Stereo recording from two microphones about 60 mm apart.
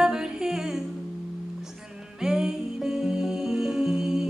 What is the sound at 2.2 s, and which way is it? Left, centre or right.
Music, centre.